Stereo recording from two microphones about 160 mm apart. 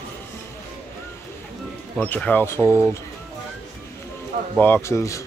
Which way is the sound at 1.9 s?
10° left (ahead or behind).